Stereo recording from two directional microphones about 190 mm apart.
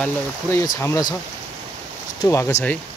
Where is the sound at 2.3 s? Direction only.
15° left (ahead or behind).